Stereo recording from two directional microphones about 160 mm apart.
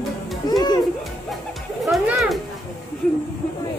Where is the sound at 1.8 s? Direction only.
Centre (ahead or behind).